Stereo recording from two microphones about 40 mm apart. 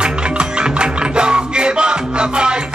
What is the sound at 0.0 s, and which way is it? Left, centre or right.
Music, right.